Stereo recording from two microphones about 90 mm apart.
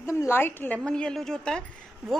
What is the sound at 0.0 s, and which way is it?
Speech, 30° left (ahead or behind).